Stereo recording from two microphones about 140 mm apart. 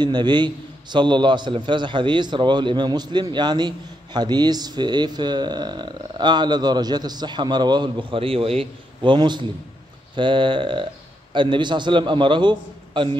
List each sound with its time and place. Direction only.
0.0 s a man's voice: 30° right (ahead or behind)